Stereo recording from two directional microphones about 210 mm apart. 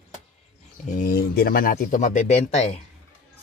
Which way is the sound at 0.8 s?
40° left (ahead or behind).